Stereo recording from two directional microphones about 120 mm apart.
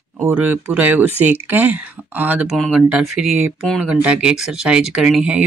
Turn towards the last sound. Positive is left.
turn(degrees=-5)  # may be behind; listen again after turning